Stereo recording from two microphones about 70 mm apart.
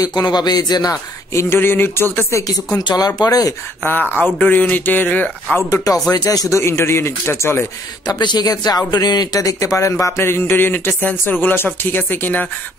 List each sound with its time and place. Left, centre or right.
0.0 s speech: left
1.3 s speech: left
2.8 s speech: left
3.2 s speech: left
3.8 s speech: left
5.7 s speech: left
6.6 s speech: left
8.1 s speech: left
10.2 s speech: left